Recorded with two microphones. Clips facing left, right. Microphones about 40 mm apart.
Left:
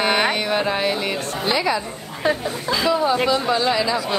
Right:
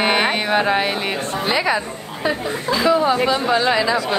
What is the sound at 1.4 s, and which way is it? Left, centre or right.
Speech, right.